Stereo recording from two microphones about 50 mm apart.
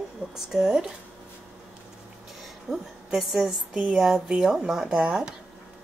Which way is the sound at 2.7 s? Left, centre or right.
Centre.